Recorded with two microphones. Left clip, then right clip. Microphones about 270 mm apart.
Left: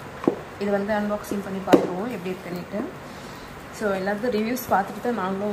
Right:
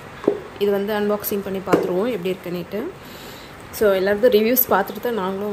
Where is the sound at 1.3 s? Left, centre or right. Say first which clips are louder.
Right 5 dB; right.